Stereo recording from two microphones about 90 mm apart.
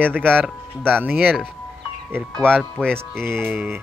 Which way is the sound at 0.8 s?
15° right (ahead or behind).